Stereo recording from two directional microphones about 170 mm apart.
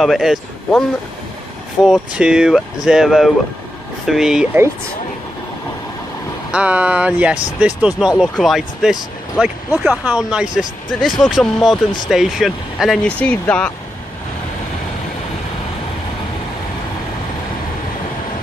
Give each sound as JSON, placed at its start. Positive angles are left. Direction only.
{"t": 0.0, "sound": "speech", "side_deg": 0}
{"t": 1.9, "sound": "speech", "side_deg": -5}
{"t": 6.5, "sound": "speech", "side_deg": -10}